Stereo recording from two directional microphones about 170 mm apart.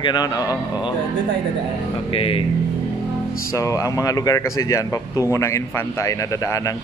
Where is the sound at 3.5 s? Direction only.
20° left (ahead or behind).